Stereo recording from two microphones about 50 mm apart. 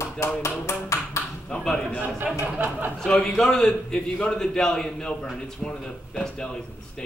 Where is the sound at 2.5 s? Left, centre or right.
Right.